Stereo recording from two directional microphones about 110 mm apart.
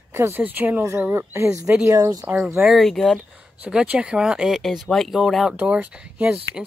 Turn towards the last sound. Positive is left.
turn(degrees=-15)  # may be behind; listen again after turning